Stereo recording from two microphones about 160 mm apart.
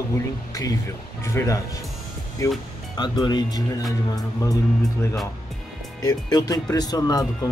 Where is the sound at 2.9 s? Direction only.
30° left (ahead or behind).